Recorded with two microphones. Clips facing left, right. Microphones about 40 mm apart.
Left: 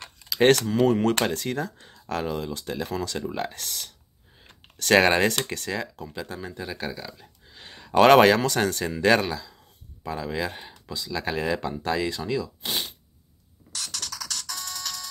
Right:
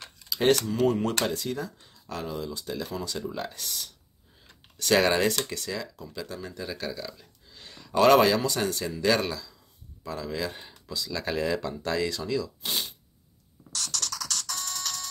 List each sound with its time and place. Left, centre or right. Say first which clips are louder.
0.3 s speech: left 4 dB; left
1.1 s speech: left 3 dB; left
2.9 s speech: left 4 dB; left
3.2 s speech: left 3 dB; left
6.6 s speech: even; centre
7.4 s a sound: left 3 dB; left
7.9 s speech: left 4 dB; left
9.3 s speech: left 3 dB; left
13.7 s music: right 1 dB; centre